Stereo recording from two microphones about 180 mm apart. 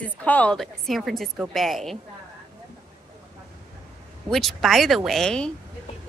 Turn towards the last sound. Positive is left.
turn(degrees=5)  # may be behind; listen again after turning